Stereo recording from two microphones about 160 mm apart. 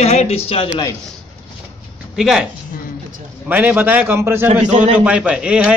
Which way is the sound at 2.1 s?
5° right (ahead or behind).